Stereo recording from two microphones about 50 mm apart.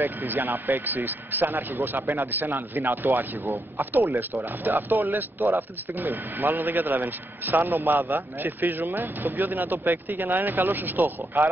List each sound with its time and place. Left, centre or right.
0.0 s speech: right